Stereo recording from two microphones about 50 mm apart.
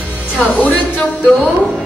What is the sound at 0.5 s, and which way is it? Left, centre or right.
Speech, left.